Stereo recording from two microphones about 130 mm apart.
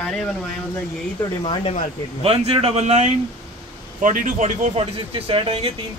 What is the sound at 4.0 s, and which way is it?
Speech, 90° right.